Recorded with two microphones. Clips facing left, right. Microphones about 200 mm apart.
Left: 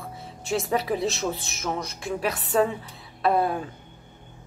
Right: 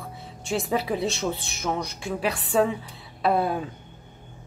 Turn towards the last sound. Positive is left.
turn(degrees=0)  # may be behind; listen again after turning